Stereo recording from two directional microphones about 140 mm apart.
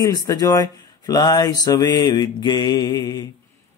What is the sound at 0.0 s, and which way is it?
Mantra, 25° left (ahead or behind).